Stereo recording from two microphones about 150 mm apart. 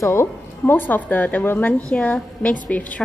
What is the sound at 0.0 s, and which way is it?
A woman's voice, 15° left (ahead or behind).